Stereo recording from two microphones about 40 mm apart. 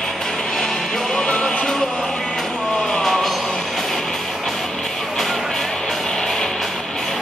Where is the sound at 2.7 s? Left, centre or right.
Centre.